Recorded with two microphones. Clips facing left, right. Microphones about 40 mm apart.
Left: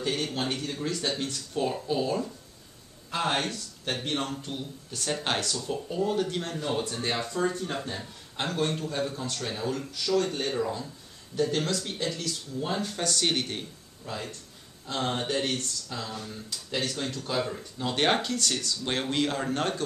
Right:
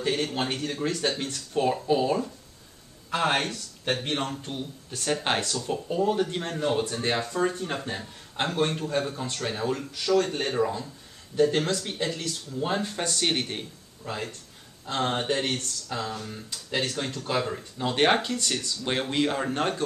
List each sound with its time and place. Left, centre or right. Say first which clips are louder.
0.0 s speech: right 3 dB; right
6.4 s speech: right 5 dB; right
6.9 s speech: right 3 dB; centre
7.4 s speech: right 1 dB; right; by 13.7 s centre
14.9 s speech: right 3 dB; right; by 19.8 s centre